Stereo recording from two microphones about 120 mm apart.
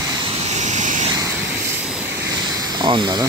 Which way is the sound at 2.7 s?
40° right (ahead or behind).